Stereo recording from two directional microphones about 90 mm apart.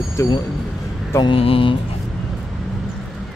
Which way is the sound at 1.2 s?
90° left.